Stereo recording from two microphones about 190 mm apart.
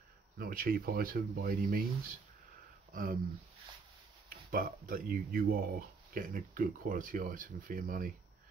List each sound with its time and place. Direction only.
0.4 s speech: 50° right (ahead or behind)
2.9 s speech: 45° right (ahead or behind)
4.5 s speech: 50° right (ahead or behind)